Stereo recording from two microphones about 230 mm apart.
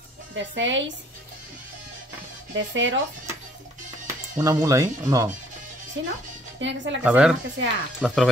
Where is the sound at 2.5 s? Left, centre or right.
Right.